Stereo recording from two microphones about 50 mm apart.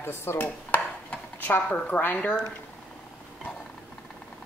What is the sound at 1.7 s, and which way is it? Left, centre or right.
Speech, left.